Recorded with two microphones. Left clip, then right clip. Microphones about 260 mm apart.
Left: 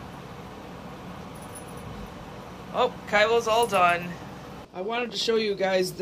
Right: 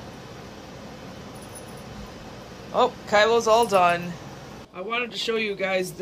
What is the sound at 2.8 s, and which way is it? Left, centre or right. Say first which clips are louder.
A man's voice: right 3 dB; right.